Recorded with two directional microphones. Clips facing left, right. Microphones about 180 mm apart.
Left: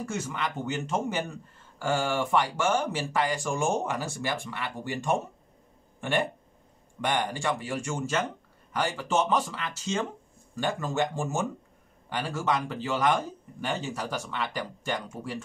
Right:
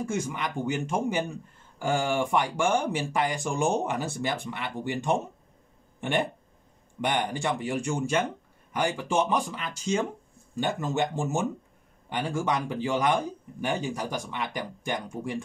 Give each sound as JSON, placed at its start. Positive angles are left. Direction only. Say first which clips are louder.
{"t": 0.3, "sound": "speech", "louder": "right 2 dB", "side_deg": -15}